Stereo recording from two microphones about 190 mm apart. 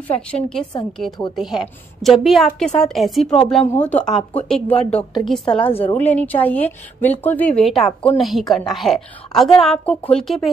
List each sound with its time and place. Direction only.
0.3 s a woman's voice: 5° left (ahead or behind)
4.6 s speech: 30° left (ahead or behind)
5.1 s a woman's voice: centre (ahead or behind)
5.4 s a woman's voice: 25° left (ahead or behind)
5.9 s a woman's voice: 10° left (ahead or behind)